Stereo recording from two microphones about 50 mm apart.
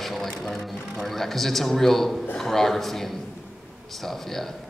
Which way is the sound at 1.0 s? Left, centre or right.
Centre.